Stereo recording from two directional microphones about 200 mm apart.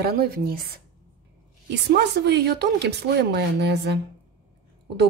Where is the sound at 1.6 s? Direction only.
55° right (ahead or behind).